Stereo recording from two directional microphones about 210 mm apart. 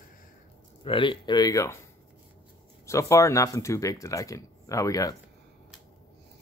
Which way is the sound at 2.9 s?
15° left (ahead or behind).